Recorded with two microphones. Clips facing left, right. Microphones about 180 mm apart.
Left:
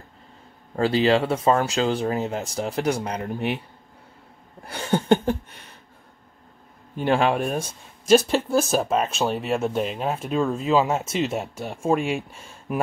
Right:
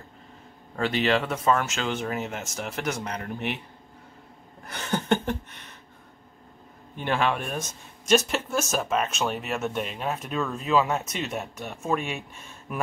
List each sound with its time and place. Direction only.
0.7 s speech: 35° left (ahead or behind)
4.6 s speech: 30° left (ahead or behind)
7.0 s speech: 35° left (ahead or behind)